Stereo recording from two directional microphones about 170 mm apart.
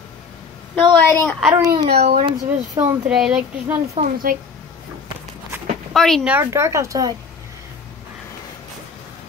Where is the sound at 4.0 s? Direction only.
35° right (ahead or behind).